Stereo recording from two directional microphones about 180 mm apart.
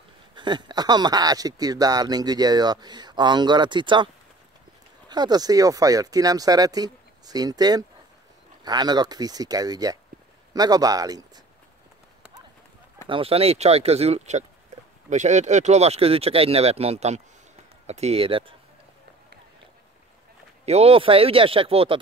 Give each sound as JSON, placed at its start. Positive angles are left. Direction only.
{"t": 0.3, "sound": "speech", "side_deg": -25}
{"t": 13.1, "sound": "speech", "side_deg": -30}
{"t": 20.6, "sound": "speech", "side_deg": -35}